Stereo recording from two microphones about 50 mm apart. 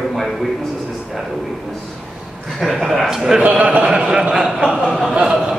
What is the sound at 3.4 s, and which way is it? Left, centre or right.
Speech, right.